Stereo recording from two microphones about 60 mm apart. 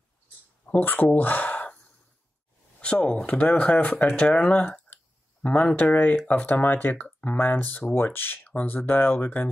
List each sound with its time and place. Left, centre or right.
0.7 s speech: left
2.8 s speech: centre
4.7 s clicking: left
6.2 s speech: left